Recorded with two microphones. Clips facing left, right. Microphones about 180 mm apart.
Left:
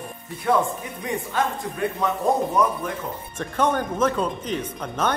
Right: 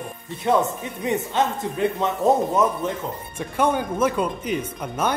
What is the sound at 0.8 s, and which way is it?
Speech, 25° right (ahead or behind).